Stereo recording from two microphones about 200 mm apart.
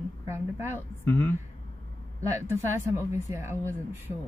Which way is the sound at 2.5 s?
10° right (ahead or behind).